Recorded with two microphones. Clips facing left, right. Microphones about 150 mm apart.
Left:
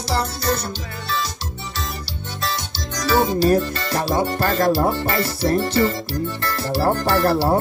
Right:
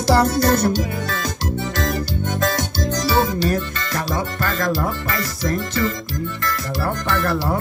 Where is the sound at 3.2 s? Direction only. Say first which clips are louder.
Left 4 dB; 30° left (ahead or behind).